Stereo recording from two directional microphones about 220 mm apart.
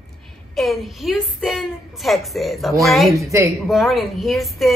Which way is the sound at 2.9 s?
Centre (ahead or behind).